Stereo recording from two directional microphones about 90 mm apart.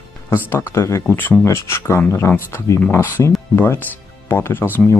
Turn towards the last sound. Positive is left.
turn(degrees=25)  # may be behind; listen again after turning